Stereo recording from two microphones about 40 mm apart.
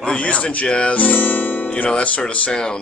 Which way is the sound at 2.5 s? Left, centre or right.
Centre.